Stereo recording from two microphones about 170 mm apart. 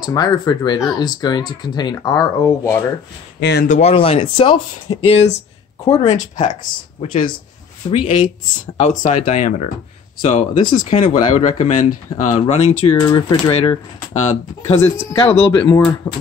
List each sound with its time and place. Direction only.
0.0 s speech: 25° left (ahead or behind)
3.3 s speech: 90° left
3.6 s speech: 45° left (ahead or behind)
3.9 s speech: 35° left (ahead or behind)
7.0 s speech: 35° left (ahead or behind)
13.0 s speech: 20° left (ahead or behind)
13.5 s speech: 35° left (ahead or behind)
15.1 s speech: 30° left (ahead or behind)